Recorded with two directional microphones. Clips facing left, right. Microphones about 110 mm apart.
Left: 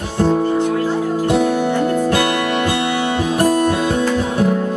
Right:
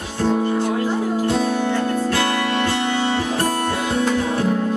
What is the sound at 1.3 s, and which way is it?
Music, 15° left (ahead or behind).